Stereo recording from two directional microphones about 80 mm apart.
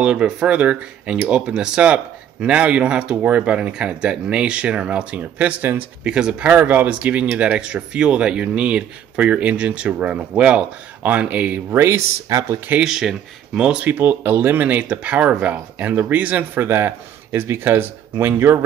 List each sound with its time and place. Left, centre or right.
0.0 s speech: centre
6.0 s speech: centre
11.7 s speech: right
12.5 s speech: right
12.8 s speech: centre
13.8 s speech: right